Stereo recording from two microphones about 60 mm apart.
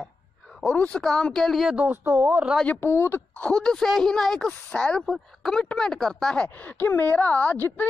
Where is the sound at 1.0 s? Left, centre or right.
Centre.